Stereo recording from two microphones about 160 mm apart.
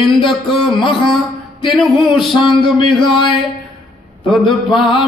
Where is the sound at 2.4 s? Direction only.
30° left (ahead or behind).